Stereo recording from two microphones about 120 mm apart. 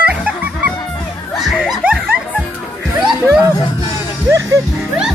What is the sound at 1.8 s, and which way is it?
Music, 10° right (ahead or behind).